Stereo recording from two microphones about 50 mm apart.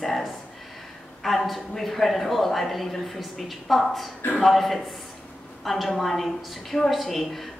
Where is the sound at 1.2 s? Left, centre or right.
Centre.